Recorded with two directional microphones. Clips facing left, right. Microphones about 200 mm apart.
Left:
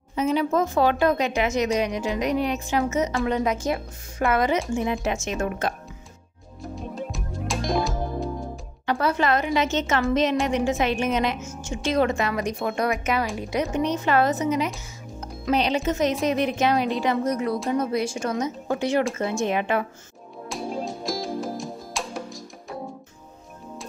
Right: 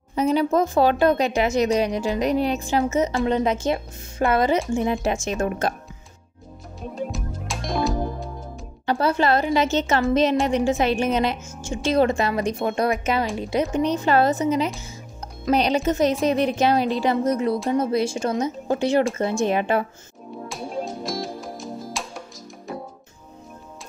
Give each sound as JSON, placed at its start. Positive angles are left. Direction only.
{"t": 0.1, "sound": "a woman's voice", "side_deg": -35}
{"t": 7.0, "sound": "music", "side_deg": 0}
{"t": 8.8, "sound": "a woman's voice", "side_deg": -30}
{"t": 20.4, "sound": "music", "side_deg": 0}